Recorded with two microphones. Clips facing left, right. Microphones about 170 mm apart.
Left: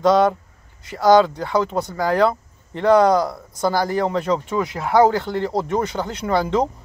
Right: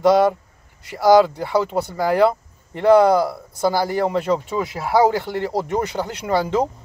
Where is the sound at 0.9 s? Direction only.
10° right (ahead or behind).